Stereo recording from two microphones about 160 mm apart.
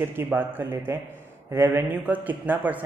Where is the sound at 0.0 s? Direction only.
15° right (ahead or behind).